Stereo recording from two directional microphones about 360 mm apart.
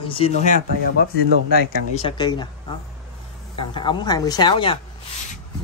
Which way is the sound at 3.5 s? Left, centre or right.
Centre.